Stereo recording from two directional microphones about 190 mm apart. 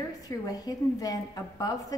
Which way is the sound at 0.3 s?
20° left (ahead or behind).